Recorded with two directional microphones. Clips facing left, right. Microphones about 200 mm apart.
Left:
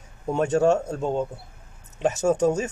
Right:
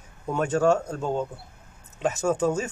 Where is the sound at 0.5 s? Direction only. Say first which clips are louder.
Left 1 dB; 25° left (ahead or behind).